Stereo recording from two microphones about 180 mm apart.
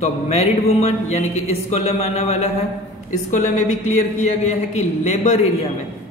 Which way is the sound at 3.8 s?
40° left (ahead or behind).